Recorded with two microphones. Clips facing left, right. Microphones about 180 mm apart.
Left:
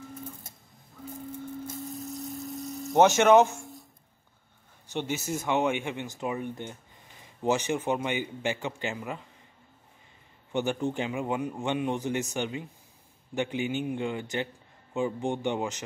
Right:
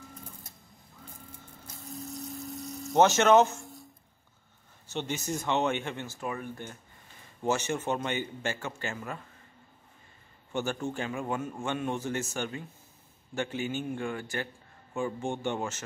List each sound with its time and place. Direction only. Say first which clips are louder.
1.8 s hum: left 4 dB; centre (ahead or behind)
3.0 s speech: left 2 dB; 15° left (ahead or behind)
3.4 s a sound: left 1 dB; centre (ahead or behind)
4.8 s speech: left 2 dB; 10° left (ahead or behind)
10.5 s speech: left 4 dB; 20° left (ahead or behind)